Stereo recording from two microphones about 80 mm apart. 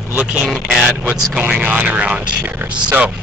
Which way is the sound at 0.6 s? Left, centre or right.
Centre.